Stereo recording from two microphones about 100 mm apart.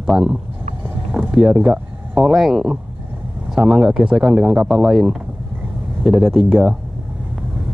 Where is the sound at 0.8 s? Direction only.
15° right (ahead or behind).